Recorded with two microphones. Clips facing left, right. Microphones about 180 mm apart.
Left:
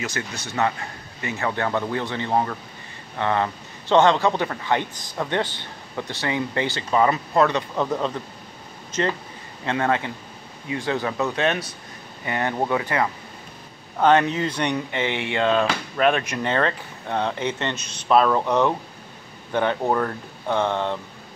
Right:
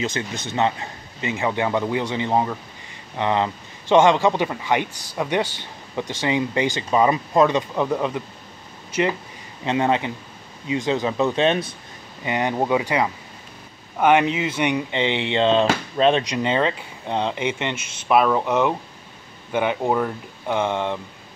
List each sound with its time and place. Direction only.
0.0 s speech: 20° right (ahead or behind)
9.7 s speech: 20° right (ahead or behind)
14.9 s speech: 20° right (ahead or behind)